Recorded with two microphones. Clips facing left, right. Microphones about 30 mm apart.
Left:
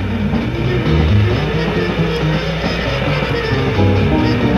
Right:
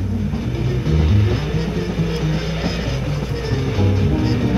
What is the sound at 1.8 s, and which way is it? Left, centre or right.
Music, left.